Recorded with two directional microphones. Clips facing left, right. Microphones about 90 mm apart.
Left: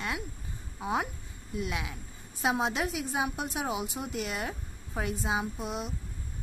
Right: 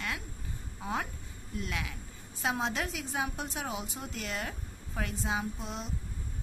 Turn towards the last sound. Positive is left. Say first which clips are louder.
# left 3 dB
turn(degrees=15)  # may be behind; listen again after turning